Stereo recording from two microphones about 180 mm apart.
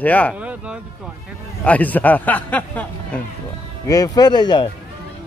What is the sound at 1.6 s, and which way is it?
Speech, 10° left (ahead or behind).